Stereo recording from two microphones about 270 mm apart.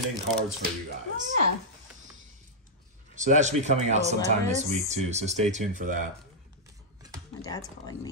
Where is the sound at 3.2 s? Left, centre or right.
Right.